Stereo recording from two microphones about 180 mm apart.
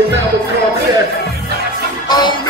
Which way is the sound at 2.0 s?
25° left (ahead or behind).